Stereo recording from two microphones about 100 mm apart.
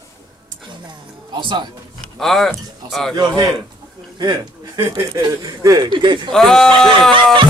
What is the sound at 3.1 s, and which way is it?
A man's voice, 45° right (ahead or behind).